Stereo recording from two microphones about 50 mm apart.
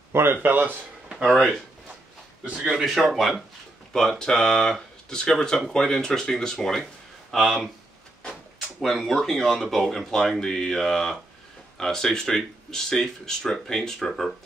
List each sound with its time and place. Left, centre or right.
0.1 s speech: right
2.4 s a man's voice: centre
2.8 s speech: centre
8.3 s drawer open or close: centre
8.8 s speech: centre